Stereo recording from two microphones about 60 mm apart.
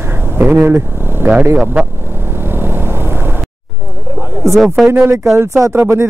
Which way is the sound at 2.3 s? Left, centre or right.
Right.